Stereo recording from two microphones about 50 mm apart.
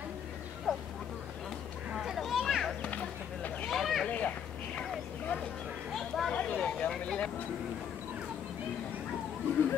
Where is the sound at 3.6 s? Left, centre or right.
Centre.